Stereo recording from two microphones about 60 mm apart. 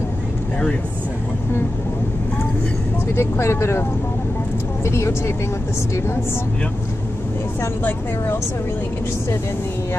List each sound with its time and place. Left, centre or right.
3.2 s speech: left
4.8 s speech: left